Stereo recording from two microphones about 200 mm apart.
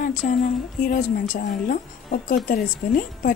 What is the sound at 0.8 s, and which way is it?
A woman's voice, 45° left (ahead or behind).